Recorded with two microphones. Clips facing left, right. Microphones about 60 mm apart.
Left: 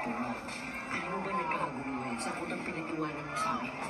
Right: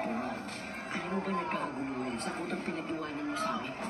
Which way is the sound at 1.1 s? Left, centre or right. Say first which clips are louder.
Even; left.